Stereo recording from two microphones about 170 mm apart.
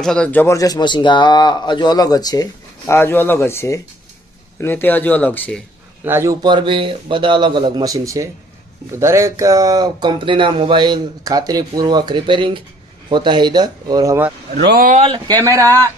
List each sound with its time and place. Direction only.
0.0 s speech: 5° left (ahead or behind)
6.0 s a man's voice: 15° right (ahead or behind)
6.4 s speech: 30° right (ahead or behind)
14.6 s speech: 60° right (ahead or behind)